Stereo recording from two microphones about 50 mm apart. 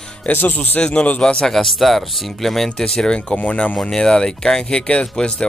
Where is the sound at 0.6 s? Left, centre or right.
Left.